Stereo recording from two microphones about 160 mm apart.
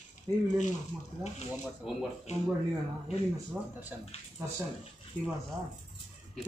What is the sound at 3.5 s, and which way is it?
Speech, 10° right (ahead or behind).